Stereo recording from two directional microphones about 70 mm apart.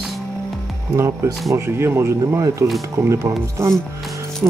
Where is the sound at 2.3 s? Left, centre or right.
Right.